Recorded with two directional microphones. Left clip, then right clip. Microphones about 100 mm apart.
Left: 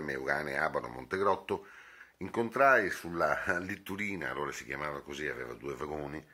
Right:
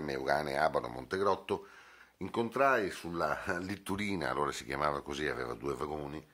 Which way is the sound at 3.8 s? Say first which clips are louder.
Right 1 dB; 45° right (ahead or behind).